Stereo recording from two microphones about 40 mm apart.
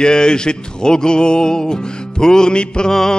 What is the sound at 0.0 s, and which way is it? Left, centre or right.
Music, left.